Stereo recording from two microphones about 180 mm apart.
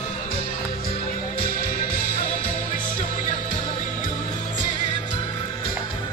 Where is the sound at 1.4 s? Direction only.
50° left (ahead or behind).